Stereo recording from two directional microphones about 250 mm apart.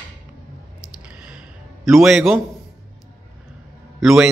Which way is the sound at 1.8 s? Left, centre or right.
Centre.